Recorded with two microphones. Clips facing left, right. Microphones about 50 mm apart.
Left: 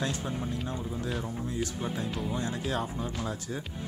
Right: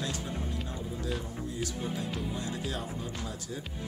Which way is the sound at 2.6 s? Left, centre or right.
Left.